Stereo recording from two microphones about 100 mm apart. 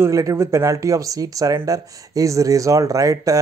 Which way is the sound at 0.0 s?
35° right (ahead or behind).